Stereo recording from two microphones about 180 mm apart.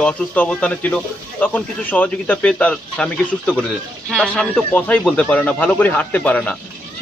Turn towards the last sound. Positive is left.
turn(degrees=10)  # may be behind; listen again after turning